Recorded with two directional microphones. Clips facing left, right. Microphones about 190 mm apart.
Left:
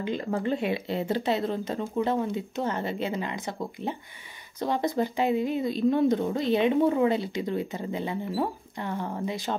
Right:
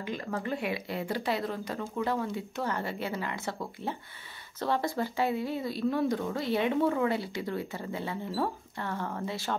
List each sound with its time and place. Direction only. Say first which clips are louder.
0.0 s speech: left 6 dB; 25° left (ahead or behind)